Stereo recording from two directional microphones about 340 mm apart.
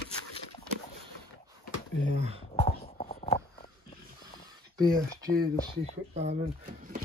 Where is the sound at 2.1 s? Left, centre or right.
Centre.